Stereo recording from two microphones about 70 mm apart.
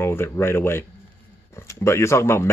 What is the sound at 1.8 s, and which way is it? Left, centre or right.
Speech, left.